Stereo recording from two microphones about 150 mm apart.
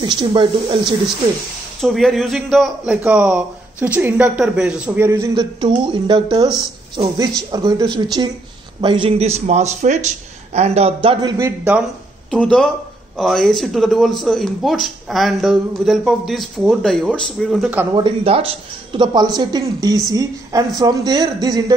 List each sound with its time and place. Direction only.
0.0 s a man's voice: 30° right (ahead or behind)
1.8 s a man's voice: centre (ahead or behind); by 11.8 s 15° right (ahead or behind)
12.3 s a man's voice: 5° left (ahead or behind)
17.9 s a man's voice: 35° right (ahead or behind)